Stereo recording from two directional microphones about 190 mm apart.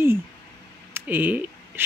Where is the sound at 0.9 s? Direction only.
10° right (ahead or behind).